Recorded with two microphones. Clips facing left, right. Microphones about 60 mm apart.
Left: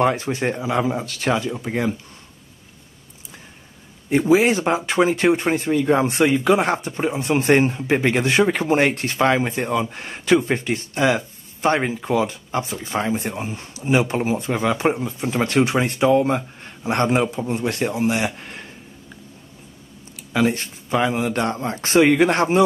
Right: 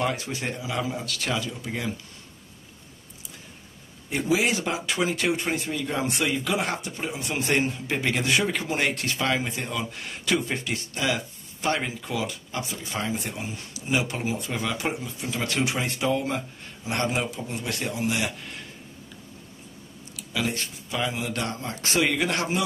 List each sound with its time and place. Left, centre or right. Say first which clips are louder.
0.0 s speech: left 8 dB; left
4.1 s speech: left 8 dB; left
20.2 s speech: left 9 dB; left